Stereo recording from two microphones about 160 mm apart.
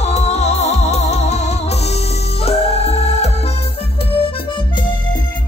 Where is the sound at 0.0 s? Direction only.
45° left (ahead or behind).